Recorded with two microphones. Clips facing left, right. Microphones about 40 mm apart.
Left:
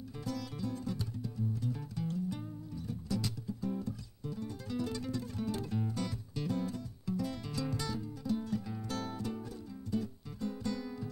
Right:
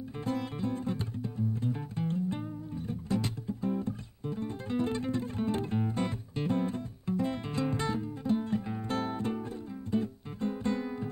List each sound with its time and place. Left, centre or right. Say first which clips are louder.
0.2 s music: right 6 dB; right